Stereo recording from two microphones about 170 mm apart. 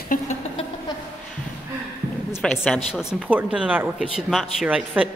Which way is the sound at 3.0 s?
5° right (ahead or behind).